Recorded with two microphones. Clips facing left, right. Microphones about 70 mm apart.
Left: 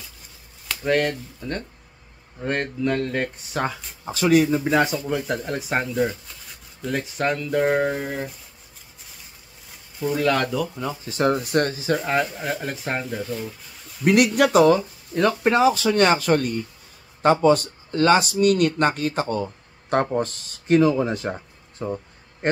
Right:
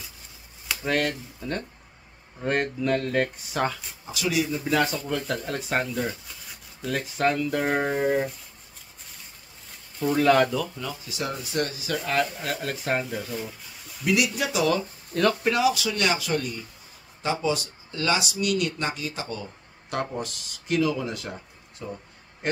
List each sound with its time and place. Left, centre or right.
0.8 s speech: centre
4.0 s speech: left
4.9 s speech: centre
9.9 s speech: centre
10.8 s speech: left
11.3 s speech: left
12.4 s speech: centre
14.0 s speech: left
15.1 s speech: right
15.4 s speech: left